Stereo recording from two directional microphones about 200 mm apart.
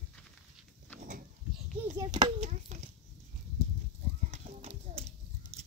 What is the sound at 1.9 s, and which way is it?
Speech, 20° right (ahead or behind).